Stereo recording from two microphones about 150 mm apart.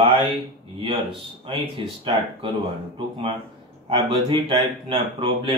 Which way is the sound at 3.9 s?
30° right (ahead or behind).